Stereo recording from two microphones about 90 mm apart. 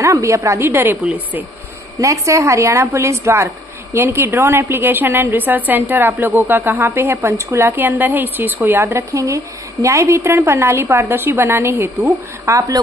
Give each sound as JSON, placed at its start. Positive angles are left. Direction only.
{"t": 0.0, "sound": "a woman's voice", "side_deg": -35}
{"t": 2.0, "sound": "a woman's voice", "side_deg": -35}